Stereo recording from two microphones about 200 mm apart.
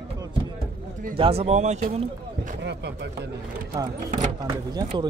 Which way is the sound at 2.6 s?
60° right (ahead or behind).